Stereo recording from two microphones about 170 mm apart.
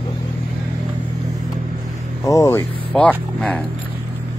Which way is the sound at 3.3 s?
5° left (ahead or behind).